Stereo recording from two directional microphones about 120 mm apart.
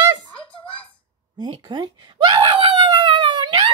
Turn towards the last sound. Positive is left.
turn(degrees=-40)  # may be behind; listen again after turning